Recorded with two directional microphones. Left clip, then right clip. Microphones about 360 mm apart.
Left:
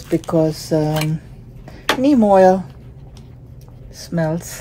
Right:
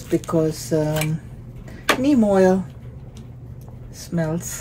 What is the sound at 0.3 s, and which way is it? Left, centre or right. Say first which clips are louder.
Speech: left 5 dB; left.